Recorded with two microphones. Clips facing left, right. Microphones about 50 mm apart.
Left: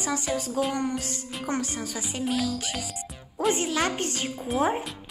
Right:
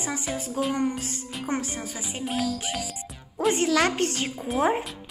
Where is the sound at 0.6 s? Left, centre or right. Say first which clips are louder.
Right 1 dB; right.